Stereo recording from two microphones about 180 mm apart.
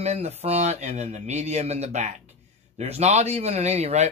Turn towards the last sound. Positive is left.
turn(degrees=-35)  # may be behind; listen again after turning